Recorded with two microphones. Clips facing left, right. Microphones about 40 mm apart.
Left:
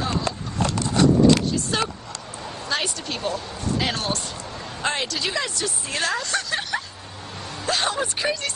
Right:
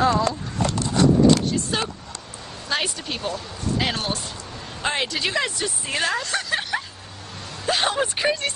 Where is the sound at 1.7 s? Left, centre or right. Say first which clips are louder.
Left 3 dB; centre.